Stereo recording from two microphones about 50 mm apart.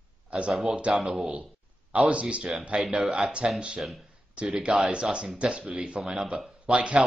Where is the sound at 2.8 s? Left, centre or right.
Centre.